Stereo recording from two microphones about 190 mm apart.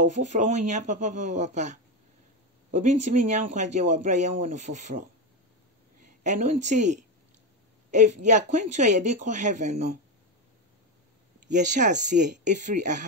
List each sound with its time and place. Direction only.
0.0 s speech: 40° right (ahead or behind)
6.2 s speech: 40° right (ahead or behind)
11.5 s speech: 40° right (ahead or behind)